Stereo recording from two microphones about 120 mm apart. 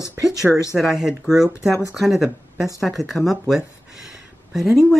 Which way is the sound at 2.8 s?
Centre (ahead or behind).